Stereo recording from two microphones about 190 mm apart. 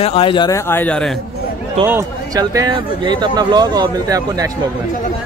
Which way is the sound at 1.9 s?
15° right (ahead or behind).